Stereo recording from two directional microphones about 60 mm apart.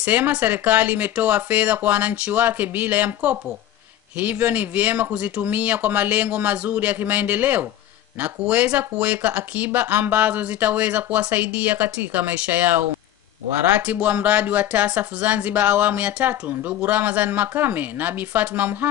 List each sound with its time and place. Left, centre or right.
0.0 s speech: right